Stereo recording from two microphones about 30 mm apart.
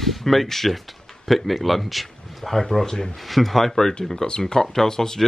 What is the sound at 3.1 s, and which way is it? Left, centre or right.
Speech, centre.